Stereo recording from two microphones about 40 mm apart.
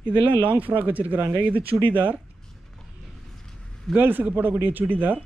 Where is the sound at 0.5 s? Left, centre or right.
Right.